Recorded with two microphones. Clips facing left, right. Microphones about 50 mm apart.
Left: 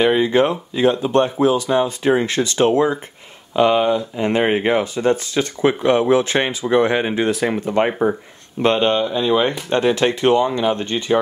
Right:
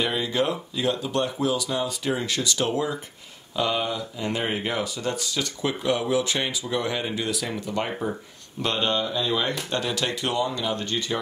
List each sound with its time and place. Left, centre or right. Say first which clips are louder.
0.0 s speech: left 10 dB; left